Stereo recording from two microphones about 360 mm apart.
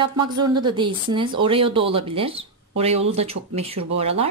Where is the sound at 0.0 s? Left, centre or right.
Centre.